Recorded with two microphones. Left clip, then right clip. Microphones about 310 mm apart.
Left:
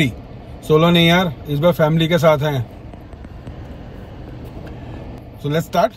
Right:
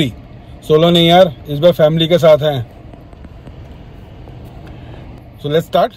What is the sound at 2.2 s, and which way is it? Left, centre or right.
Speech, centre.